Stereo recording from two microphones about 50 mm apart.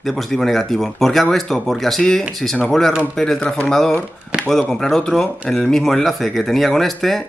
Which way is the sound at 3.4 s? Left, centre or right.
Left.